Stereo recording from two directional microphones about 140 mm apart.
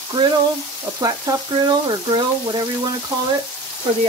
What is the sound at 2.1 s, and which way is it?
Speech, 30° right (ahead or behind).